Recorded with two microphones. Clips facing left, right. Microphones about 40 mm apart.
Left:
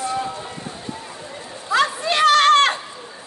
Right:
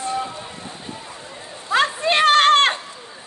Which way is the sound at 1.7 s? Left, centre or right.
Right.